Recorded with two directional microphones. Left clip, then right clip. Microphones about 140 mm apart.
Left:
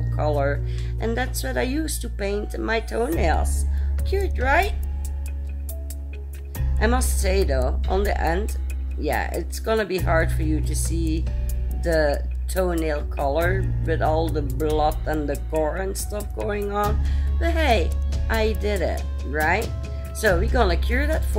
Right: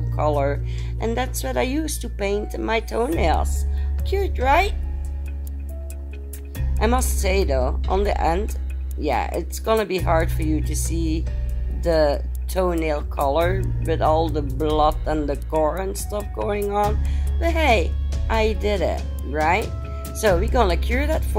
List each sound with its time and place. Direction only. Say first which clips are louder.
0.1 s speech: right 2 dB; 15° right (ahead or behind)
6.8 s speech: right 2 dB; 15° right (ahead or behind)